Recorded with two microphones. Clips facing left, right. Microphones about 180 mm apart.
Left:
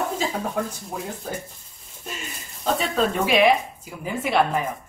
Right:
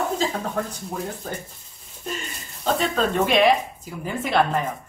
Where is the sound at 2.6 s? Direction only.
5° left (ahead or behind).